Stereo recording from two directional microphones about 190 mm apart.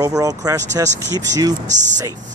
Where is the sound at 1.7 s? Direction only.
40° right (ahead or behind).